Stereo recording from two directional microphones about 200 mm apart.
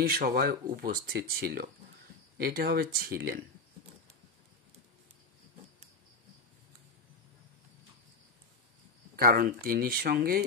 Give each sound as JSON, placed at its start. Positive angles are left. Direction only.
{"t": 0.0, "sound": "speech", "side_deg": -50}
{"t": 9.1, "sound": "speech", "side_deg": -45}